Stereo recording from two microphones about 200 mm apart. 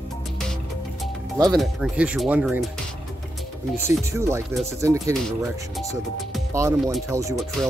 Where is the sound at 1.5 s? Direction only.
Centre (ahead or behind).